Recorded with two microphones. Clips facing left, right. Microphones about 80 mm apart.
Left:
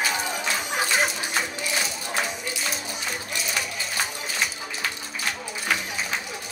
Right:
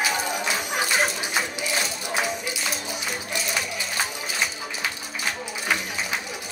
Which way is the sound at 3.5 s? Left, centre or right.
Centre.